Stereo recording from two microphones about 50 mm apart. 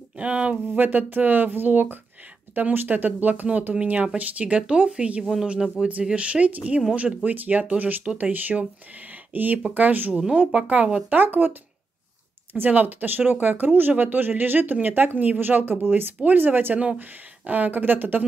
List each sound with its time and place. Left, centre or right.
0.2 s speech: right
0.7 s speech: right
11.1 s speech: right
12.5 s speech: right